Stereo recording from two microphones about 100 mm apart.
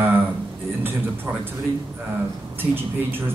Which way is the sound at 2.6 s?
20° right (ahead or behind).